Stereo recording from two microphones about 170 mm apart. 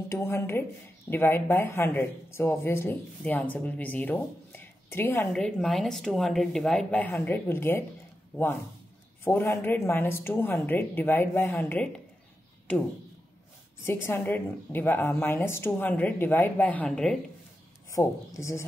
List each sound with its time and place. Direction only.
0.1 s speech: 15° left (ahead or behind)
9.2 s speech: 15° left (ahead or behind)
13.8 s speech: 15° left (ahead or behind)
17.9 s speech: 20° left (ahead or behind)